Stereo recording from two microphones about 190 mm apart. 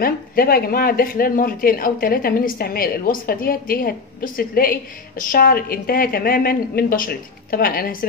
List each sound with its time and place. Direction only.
0.0 s speech: 50° left (ahead or behind)